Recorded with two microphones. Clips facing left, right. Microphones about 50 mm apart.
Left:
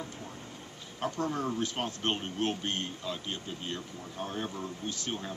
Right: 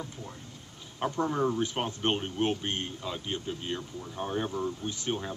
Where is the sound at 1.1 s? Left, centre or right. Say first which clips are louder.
Right 5 dB; centre.